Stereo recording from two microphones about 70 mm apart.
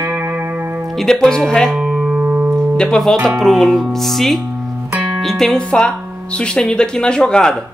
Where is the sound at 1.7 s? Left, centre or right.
Centre.